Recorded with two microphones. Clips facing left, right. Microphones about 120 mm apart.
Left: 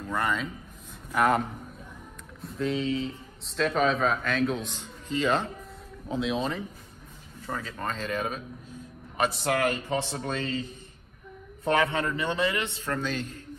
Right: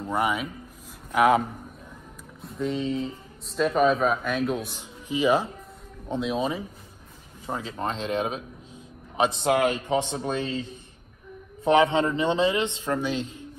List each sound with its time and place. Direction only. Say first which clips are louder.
0.0 s a man's voice: right 3 dB; 15° right (ahead or behind)
1.1 s speech: right 4 dB; 5° right (ahead or behind)
2.4 s speech: right 1 dB; centre (ahead or behind)
6.0 s speech: right 2 dB; centre (ahead or behind)
7.4 s a man's voice: right 3 dB; 20° right (ahead or behind)
11.6 s a man's voice: right 5 dB; 15° right (ahead or behind)